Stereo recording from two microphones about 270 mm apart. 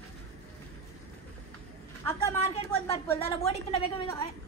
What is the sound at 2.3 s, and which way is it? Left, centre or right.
Speech, left.